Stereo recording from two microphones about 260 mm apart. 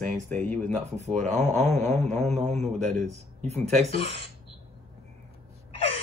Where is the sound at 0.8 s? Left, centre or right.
Right.